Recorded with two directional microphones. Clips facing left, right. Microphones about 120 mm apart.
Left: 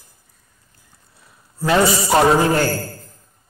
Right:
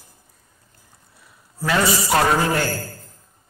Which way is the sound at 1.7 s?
25° left (ahead or behind).